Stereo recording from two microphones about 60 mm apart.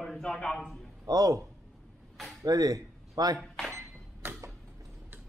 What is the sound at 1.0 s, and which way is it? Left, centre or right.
Speech, right.